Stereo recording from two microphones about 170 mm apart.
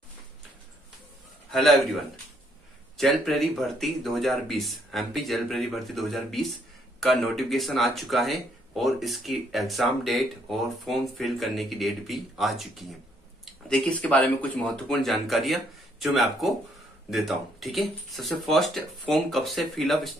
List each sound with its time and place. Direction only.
1.5 s speech: centre (ahead or behind)